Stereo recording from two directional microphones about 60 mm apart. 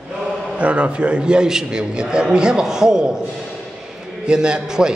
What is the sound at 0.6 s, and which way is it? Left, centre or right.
A man's voice, right.